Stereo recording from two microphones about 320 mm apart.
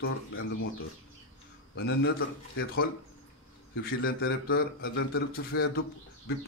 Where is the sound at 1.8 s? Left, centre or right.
Left.